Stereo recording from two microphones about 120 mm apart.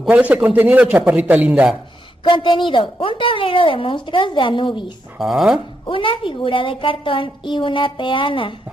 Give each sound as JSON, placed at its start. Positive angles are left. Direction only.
{"t": 0.1, "sound": "a man's voice", "side_deg": -10}
{"t": 2.2, "sound": "a woman's voice", "side_deg": 45}
{"t": 5.2, "sound": "speech", "side_deg": -5}
{"t": 5.9, "sound": "a woman's voice", "side_deg": 45}